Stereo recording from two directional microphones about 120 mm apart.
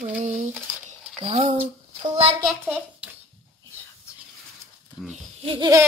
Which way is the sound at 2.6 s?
15° right (ahead or behind).